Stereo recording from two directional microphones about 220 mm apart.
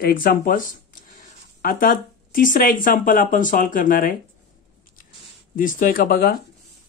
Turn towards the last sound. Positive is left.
turn(degrees=45)  # may be behind; listen again after turning